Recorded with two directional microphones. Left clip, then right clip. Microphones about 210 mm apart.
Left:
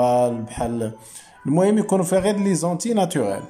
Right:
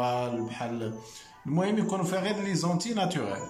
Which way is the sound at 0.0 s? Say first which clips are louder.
Left 11 dB; 30° left (ahead or behind).